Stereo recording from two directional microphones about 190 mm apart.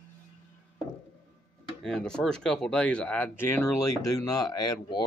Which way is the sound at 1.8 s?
5° left (ahead or behind).